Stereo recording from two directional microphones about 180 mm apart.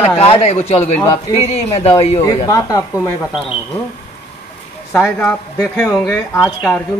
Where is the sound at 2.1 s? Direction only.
20° left (ahead or behind).